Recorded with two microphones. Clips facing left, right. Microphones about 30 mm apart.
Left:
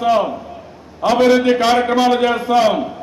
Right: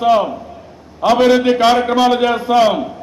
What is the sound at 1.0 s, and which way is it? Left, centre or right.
Speech, right.